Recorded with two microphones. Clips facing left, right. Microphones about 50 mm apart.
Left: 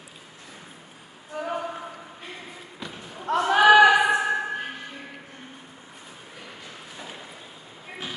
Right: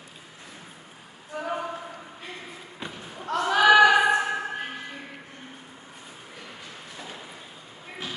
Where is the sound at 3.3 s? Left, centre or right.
Centre.